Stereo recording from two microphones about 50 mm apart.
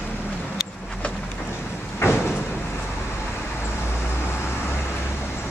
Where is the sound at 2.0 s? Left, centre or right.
Left.